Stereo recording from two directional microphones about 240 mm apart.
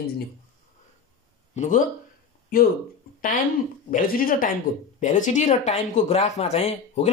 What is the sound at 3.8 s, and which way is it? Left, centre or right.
Speech, left.